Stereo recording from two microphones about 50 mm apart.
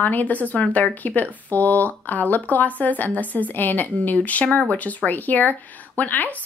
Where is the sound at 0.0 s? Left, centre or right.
Left.